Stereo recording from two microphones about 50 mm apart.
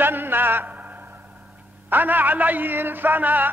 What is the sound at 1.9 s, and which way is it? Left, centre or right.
Speech, right.